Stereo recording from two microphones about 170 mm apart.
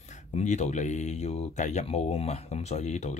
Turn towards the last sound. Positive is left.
turn(degrees=40)  # may be behind; listen again after turning